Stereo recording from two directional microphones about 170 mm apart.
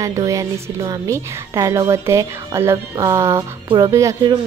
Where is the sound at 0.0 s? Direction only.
20° right (ahead or behind).